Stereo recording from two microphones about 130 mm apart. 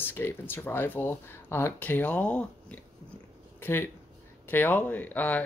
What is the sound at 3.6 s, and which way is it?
Speech, 20° left (ahead or behind).